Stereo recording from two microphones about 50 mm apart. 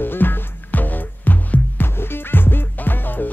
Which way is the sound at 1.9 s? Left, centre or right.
Left.